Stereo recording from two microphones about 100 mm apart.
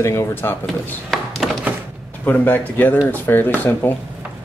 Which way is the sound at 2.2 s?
15° left (ahead or behind).